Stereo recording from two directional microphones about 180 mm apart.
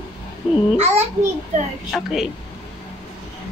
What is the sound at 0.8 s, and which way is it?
Speech, 35° right (ahead or behind).